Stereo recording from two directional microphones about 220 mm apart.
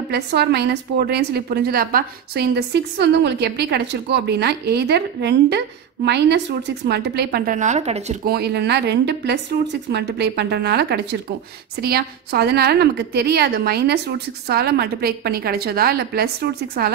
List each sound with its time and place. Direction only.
0.1 s a woman's voice: 50° right (ahead or behind); by 8.2 s 30° right (ahead or behind)
8.3 s a woman's voice: 45° right (ahead or behind)